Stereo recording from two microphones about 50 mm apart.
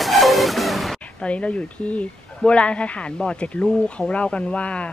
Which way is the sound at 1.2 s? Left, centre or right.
Left.